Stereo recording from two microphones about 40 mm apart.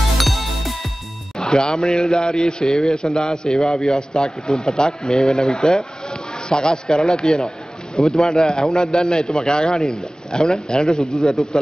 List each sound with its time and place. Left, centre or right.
0.2 s music: centre
1.4 s a man's voice: centre